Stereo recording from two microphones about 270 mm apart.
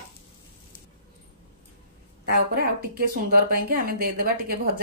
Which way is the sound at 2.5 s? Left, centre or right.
Right.